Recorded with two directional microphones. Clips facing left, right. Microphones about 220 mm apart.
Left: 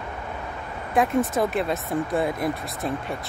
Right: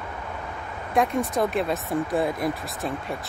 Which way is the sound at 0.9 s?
Centre (ahead or behind).